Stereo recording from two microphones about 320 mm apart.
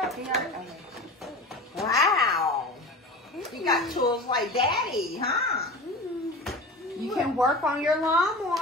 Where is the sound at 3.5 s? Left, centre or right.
Centre.